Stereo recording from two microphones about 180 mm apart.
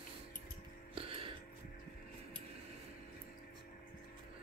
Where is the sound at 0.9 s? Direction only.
30° right (ahead or behind).